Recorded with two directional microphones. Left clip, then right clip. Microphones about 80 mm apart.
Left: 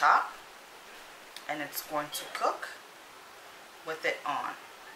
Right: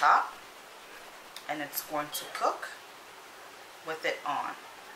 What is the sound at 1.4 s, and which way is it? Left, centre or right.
Speech, centre.